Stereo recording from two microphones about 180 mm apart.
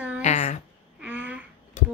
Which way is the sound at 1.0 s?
10° right (ahead or behind).